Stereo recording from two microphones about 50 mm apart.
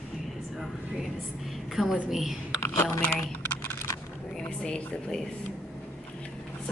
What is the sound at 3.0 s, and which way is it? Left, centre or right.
Typing, left.